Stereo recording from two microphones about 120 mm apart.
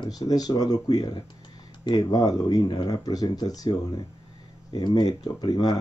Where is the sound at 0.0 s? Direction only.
30° left (ahead or behind).